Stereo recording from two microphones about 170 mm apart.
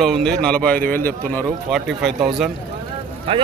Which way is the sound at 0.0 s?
Centre (ahead or behind).